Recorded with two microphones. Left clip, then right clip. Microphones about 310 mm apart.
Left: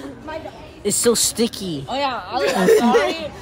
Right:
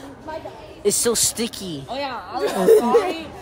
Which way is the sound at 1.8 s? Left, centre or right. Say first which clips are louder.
Left 6 dB; left.